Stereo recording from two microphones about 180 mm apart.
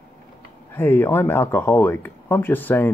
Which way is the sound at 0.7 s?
10° left (ahead or behind).